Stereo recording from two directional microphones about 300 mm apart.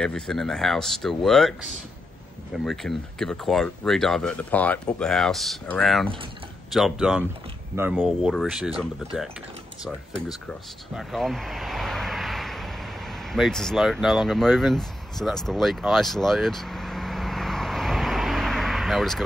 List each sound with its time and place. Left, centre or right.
0.0 s speech: centre
11.0 s vehicle: centre